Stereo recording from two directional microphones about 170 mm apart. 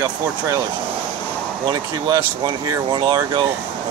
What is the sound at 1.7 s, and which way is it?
Speech, 25° right (ahead or behind).